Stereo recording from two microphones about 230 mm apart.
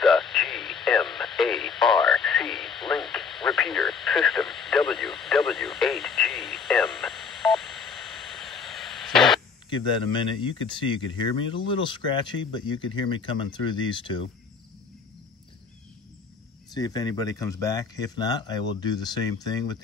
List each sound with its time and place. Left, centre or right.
0.0 s radio: centre
10.5 s a man's voice: left
16.7 s speech: centre